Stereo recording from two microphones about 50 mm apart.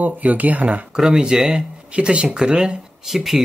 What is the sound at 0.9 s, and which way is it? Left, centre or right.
Speech, centre.